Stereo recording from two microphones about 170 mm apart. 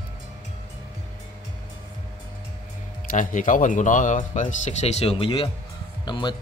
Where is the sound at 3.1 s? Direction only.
50° left (ahead or behind); by 6.3 s 25° left (ahead or behind).